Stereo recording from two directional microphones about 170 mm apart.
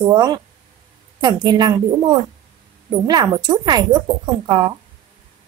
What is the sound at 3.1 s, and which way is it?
A woman's voice, 25° right (ahead or behind).